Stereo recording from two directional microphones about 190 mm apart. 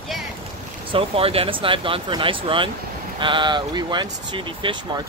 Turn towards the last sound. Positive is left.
turn(degrees=-25)  # may be behind; listen again after turning